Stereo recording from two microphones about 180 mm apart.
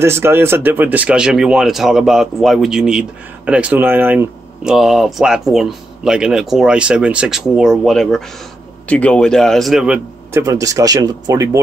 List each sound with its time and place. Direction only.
0.0 s speech: 15° right (ahead or behind)
10.4 s speech: 20° right (ahead or behind)